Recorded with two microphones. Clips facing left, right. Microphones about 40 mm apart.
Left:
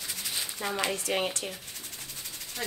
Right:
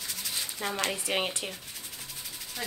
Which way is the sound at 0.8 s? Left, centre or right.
Centre.